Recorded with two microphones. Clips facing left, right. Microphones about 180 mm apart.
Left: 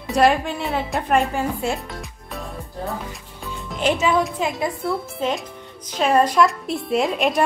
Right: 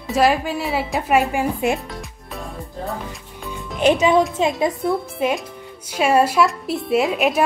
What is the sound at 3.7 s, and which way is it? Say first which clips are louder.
Speech: right 4 dB; 20° right (ahead or behind).